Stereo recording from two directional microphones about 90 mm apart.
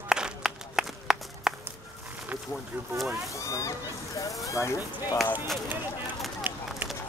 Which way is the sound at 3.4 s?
35° left (ahead or behind).